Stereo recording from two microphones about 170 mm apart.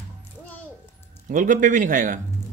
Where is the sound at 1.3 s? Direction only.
50° right (ahead or behind).